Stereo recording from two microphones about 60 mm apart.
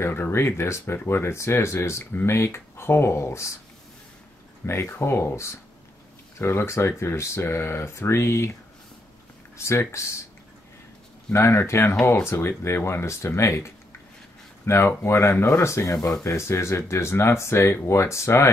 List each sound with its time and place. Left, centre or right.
0.0 s speech: left
4.6 s speech: left
9.6 s speech: left
11.3 s speech: left
14.7 s speech: left